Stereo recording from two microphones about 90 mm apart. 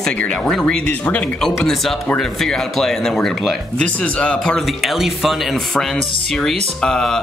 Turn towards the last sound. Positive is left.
turn(degrees=5)  # may be behind; listen again after turning